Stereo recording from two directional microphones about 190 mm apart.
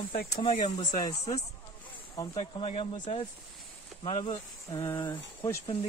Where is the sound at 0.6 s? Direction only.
35° left (ahead or behind).